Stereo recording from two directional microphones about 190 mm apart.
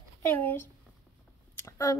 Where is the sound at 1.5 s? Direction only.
15° left (ahead or behind).